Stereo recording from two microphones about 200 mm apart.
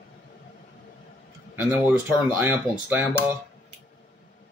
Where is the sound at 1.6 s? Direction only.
10° right (ahead or behind).